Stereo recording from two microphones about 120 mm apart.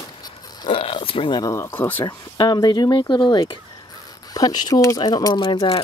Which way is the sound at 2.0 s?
40° left (ahead or behind).